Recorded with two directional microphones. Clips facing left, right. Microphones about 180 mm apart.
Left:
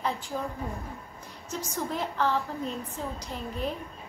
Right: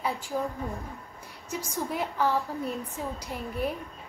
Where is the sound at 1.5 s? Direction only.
15° right (ahead or behind).